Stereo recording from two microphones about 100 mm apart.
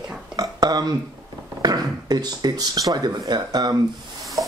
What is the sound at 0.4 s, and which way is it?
Burping, 40° right (ahead or behind).